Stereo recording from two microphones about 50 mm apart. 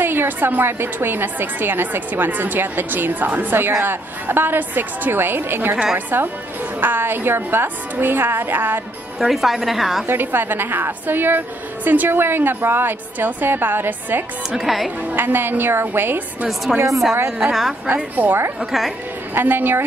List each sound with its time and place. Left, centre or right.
0.0 s a woman's voice: right
9.2 s a woman's voice: centre
10.0 s a woman's voice: right
12.1 s a woman's voice: right
14.6 s a woman's voice: centre
15.1 s a woman's voice: right
16.7 s a woman's voice: centre
17.9 s a woman's voice: right